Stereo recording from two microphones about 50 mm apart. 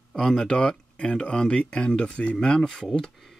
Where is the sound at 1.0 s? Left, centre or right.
Centre.